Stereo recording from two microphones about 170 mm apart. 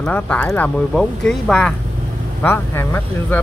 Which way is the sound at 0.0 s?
5° left (ahead or behind).